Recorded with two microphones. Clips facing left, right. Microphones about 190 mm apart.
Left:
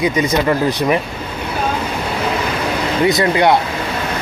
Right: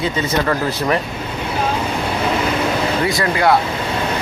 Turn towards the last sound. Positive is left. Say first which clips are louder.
# left 3 dB
turn(degrees=20)  # may be behind; listen again after turning